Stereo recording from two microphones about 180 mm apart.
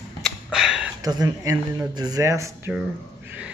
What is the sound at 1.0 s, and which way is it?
Speech, 20° right (ahead or behind).